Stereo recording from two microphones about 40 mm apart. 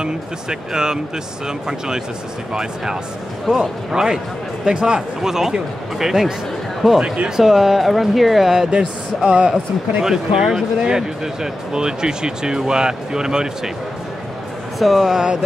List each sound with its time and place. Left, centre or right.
0.0 s speech: centre
2.5 s speech: centre
8.6 s speech: right
10.0 s speech: centre
14.8 s speech: centre